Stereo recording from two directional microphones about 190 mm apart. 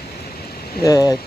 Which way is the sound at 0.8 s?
20° left (ahead or behind).